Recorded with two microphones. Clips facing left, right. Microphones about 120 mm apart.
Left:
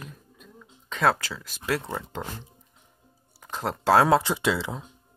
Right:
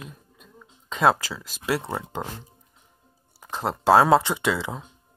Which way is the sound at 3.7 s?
5° right (ahead or behind).